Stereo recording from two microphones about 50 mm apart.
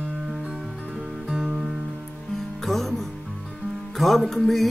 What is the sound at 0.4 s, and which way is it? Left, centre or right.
Music, right.